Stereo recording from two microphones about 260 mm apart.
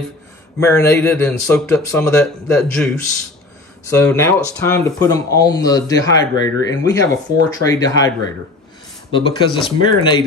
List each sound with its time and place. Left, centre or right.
0.6 s speech: centre
4.0 s speech: centre
9.1 s speech: centre